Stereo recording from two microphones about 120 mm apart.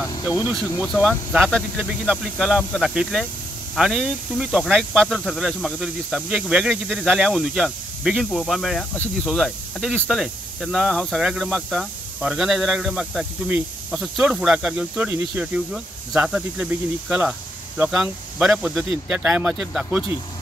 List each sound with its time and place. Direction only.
0.1 s speech: 25° left (ahead or behind)
0.5 s speech: 5° right (ahead or behind)